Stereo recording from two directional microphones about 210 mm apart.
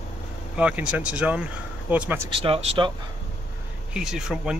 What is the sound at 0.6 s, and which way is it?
Speech, 5° right (ahead or behind).